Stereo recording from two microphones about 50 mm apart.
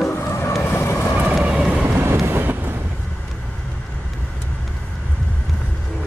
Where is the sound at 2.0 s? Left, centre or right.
Right.